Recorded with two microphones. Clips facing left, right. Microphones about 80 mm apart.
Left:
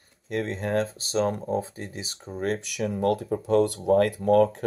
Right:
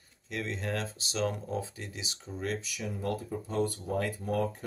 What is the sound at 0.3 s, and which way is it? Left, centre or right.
Speech, left.